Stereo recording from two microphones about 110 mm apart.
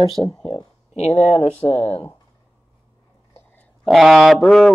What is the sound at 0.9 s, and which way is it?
Speech, 80° left.